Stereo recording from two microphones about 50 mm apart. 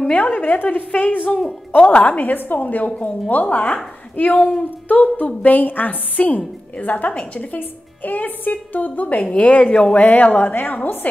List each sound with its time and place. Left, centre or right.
0.0 s a woman's voice: left
9.9 s a woman's voice: left
10.5 s a woman's voice: left